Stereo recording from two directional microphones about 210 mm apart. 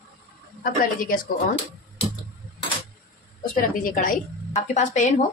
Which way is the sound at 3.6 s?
40° left (ahead or behind).